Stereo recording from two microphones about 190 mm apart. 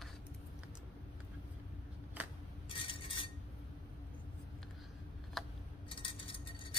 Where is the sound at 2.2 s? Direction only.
10° right (ahead or behind).